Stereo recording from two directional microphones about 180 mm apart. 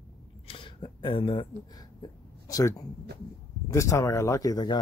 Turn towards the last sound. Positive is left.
turn(degrees=20)  # may be behind; listen again after turning